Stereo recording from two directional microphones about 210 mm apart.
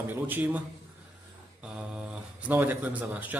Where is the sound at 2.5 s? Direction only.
10° right (ahead or behind).